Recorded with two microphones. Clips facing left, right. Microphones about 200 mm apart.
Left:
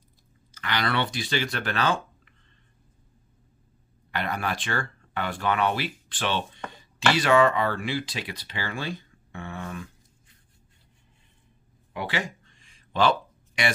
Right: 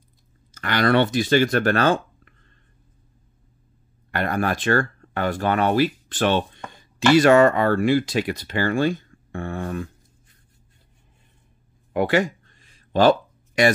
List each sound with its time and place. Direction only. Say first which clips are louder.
0.6 s speech: right 9 dB; 50° right (ahead or behind)
4.1 s speech: right 6 dB; 50° right (ahead or behind)
11.9 s a sound: right 11 dB; 50° right (ahead or behind)